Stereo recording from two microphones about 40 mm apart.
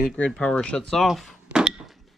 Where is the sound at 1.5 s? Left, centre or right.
Right.